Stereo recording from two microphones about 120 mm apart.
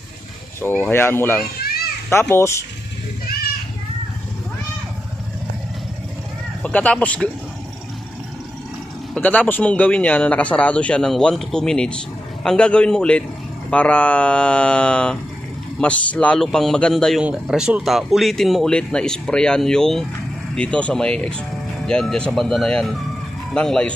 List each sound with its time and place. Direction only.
0.6 s a man's voice: 15° left (ahead or behind)
6.6 s speech: 10° left (ahead or behind)
9.1 s a man's voice: 10° left (ahead or behind)
17.2 s a man's voice: 10° right (ahead or behind)